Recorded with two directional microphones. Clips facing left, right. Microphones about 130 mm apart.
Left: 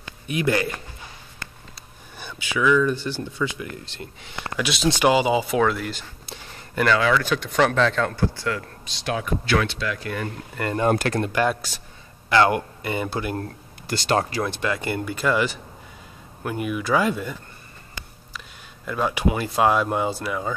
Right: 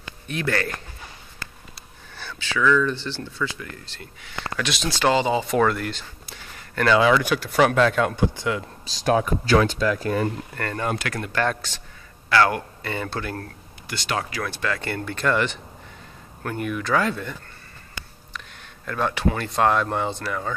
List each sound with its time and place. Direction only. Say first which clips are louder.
0.3 s speech: left 3 dB; 15° left (ahead or behind)
2.1 s speech: left 1 dB; 15° left (ahead or behind)
4.6 s speech: left 2 dB; centre (ahead or behind)
4.8 s speech: left 2 dB; 15° left (ahead or behind)
7.0 s speech: right 2 dB; 15° right (ahead or behind)
8.8 s speech: right 7 dB; 40° right (ahead or behind)
10.9 s speech: left 6 dB; 40° left (ahead or behind)
11.3 s speech: left 2 dB; 10° left (ahead or behind)
13.8 s speech: left 6 dB; 35° left (ahead or behind)
14.4 s speech: left 2 dB; 20° left (ahead or behind)
18.9 s speech: left 1 dB; 10° left (ahead or behind)